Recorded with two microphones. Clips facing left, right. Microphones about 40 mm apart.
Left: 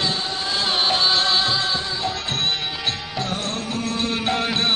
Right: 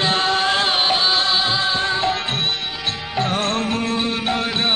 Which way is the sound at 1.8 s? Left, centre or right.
Right.